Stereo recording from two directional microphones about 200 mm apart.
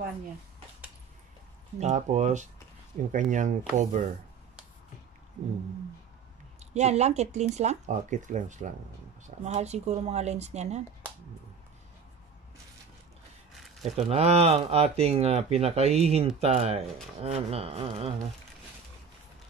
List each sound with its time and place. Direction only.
1.8 s speech: 35° right (ahead or behind)
6.6 s speech: 35° right (ahead or behind)
13.9 s speech: 30° right (ahead or behind)